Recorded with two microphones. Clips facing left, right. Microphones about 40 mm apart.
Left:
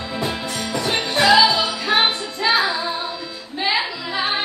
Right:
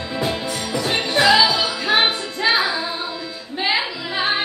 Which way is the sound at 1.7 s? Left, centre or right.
Right.